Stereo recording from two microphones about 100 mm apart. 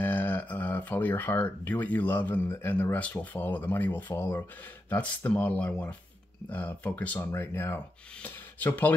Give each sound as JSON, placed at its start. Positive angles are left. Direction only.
{"t": 0.0, "sound": "speech", "side_deg": 20}